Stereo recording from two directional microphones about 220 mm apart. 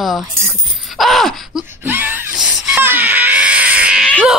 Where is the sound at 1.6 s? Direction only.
10° right (ahead or behind).